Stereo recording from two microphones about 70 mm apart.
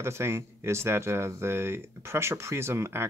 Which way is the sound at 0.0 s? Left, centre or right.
Right.